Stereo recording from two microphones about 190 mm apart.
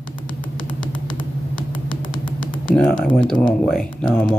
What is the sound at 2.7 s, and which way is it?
Speech, 5° left (ahead or behind).